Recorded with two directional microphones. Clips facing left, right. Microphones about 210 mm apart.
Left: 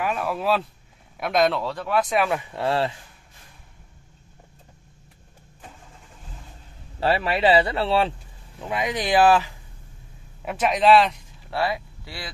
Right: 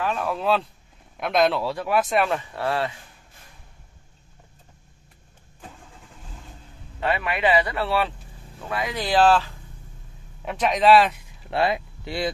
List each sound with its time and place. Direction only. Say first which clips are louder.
0.0 s a man's voice: even; 5° left (ahead or behind)
2.5 s speech: left 2 dB; 25° left (ahead or behind)
7.0 s a man's voice: left 3 dB; 30° left (ahead or behind); by 11.1 s centre (ahead or behind)
11.5 s speech: right 3 dB; 20° right (ahead or behind)